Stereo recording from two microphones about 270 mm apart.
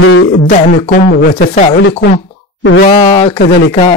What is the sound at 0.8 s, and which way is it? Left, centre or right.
Speech, left.